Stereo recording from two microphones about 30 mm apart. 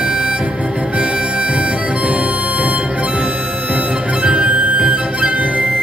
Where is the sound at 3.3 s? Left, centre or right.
Right.